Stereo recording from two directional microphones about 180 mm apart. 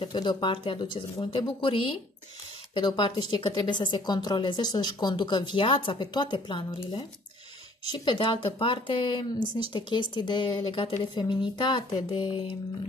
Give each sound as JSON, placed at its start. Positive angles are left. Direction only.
{"t": 0.0, "sound": "speech", "side_deg": 25}